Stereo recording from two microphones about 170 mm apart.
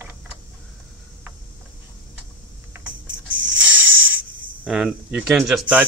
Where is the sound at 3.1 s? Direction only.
90° right.